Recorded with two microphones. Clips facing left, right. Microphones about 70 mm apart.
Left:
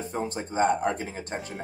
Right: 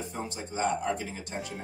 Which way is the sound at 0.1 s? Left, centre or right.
Left.